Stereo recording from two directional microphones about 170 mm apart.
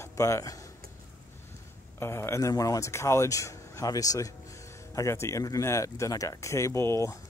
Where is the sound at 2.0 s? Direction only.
15° left (ahead or behind).